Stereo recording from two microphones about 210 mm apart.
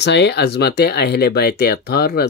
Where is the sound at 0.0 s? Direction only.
50° left (ahead or behind).